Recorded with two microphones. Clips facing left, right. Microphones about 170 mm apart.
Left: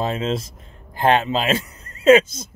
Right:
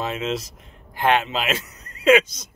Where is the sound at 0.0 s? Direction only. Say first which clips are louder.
Left 3 dB; 30° left (ahead or behind).